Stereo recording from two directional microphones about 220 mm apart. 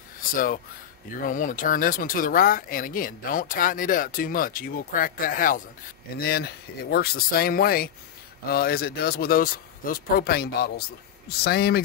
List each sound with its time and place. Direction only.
0.2 s speech: 40° left (ahead or behind)